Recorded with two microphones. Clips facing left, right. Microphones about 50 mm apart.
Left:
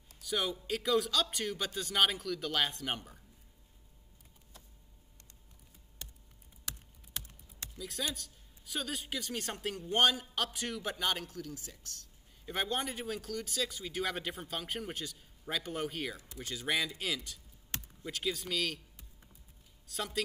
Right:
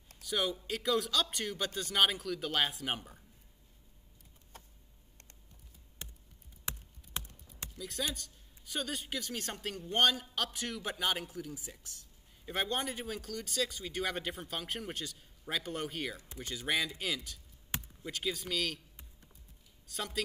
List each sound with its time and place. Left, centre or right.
0.2 s speech: centre
4.5 s a sound: right
6.0 s chop: right
6.7 s a sound: right
7.7 s a sound: centre
8.1 s speech: centre
11.2 s speech: centre
12.4 s speech: centre
19.9 s speech: centre